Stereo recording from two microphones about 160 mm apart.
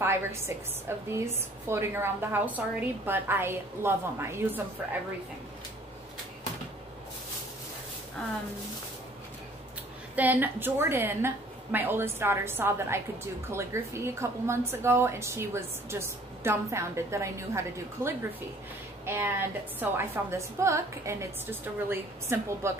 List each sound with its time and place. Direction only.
0.0 s a woman's voice: 15° right (ahead or behind)
10.1 s a woman's voice: 10° right (ahead or behind)